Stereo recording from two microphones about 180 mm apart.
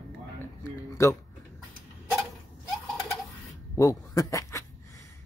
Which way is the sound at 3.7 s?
15° left (ahead or behind).